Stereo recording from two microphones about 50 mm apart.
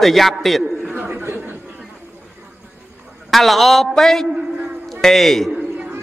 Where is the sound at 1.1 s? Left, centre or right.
Right.